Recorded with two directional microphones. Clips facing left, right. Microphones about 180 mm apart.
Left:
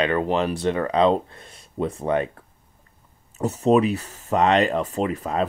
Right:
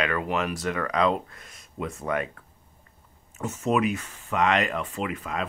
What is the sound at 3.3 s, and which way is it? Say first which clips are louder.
Speech: left 7 dB; 35° left (ahead or behind).